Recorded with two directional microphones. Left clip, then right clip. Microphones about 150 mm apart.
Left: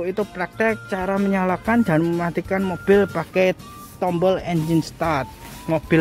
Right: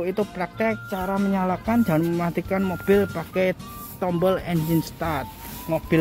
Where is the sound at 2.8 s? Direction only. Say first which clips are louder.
Left 5 dB; 30° left (ahead or behind).